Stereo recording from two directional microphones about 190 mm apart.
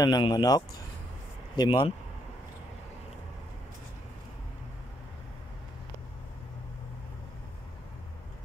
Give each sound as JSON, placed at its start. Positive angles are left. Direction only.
{"t": 0.0, "sound": "speech", "side_deg": 20}